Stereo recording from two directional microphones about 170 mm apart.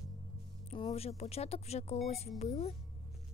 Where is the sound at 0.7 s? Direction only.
35° left (ahead or behind).